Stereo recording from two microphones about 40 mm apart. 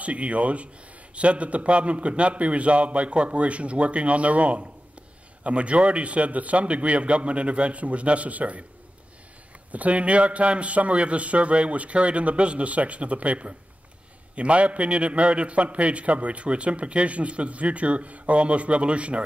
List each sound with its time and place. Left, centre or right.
0.0 s a man's voice: right
9.7 s a man's voice: right